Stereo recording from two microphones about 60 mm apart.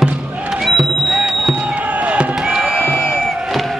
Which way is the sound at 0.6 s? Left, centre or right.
Centre.